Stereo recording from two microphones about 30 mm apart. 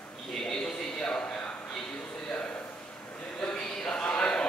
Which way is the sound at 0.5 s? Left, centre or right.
Left.